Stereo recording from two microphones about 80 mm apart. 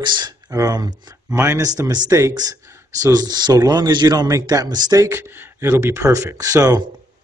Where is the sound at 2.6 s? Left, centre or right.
Right.